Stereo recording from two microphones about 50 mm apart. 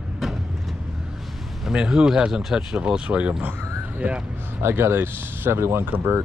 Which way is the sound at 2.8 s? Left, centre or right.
Centre.